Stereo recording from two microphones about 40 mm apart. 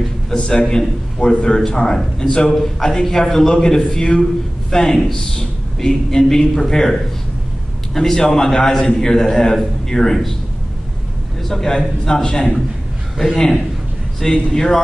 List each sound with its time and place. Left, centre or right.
0.4 s a man's voice: left
2.2 s a man's voice: left
2.5 s a man's voice: centre
11.4 s a man's voice: centre
14.5 s a man's voice: centre